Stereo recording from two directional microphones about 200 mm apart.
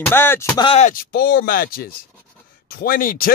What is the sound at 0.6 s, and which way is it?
Speech, 30° left (ahead or behind).